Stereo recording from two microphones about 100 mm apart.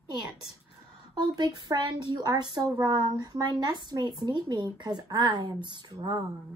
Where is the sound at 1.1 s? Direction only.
45° right (ahead or behind).